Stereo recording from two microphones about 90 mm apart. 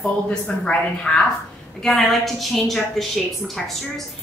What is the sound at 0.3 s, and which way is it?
A woman's voice, 10° left (ahead or behind).